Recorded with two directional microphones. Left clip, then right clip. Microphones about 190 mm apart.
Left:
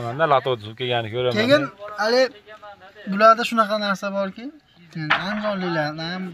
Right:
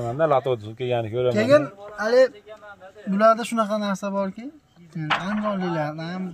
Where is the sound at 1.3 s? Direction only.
35° left (ahead or behind).